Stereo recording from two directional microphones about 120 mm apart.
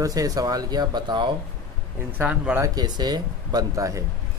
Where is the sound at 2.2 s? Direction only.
15° right (ahead or behind).